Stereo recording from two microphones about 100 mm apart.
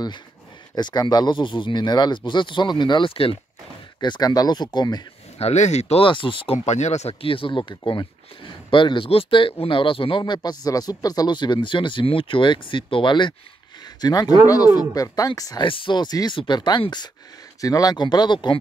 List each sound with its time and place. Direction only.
0.7 s speech: 45° left (ahead or behind)
4.0 s speech: 45° left (ahead or behind)
5.4 s speech: 90° left; by 13.3 s 50° left (ahead or behind)
14.0 s speech: 40° left (ahead or behind)
15.6 s speech: 55° left (ahead or behind)
17.6 s speech: 35° left (ahead or behind)